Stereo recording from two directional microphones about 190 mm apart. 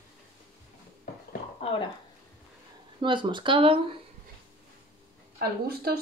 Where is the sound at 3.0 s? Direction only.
25° right (ahead or behind).